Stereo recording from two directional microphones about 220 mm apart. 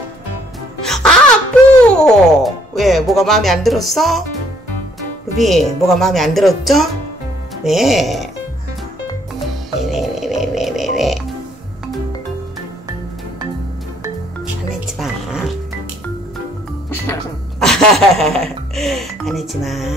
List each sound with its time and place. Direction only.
0.8 s music: centre (ahead or behind)
5.4 s speech: centre (ahead or behind)
9.9 s music: centre (ahead or behind)
14.7 s music: centre (ahead or behind)
17.0 s music: 10° left (ahead or behind)
17.6 s music: centre (ahead or behind)